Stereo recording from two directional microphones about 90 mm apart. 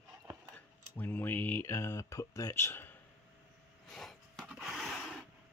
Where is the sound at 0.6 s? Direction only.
20° left (ahead or behind).